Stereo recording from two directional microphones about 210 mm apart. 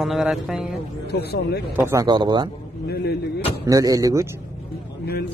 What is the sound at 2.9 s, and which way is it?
Speech, 50° left (ahead or behind).